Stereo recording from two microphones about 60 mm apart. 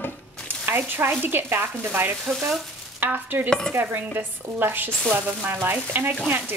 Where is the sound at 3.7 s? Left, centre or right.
Right.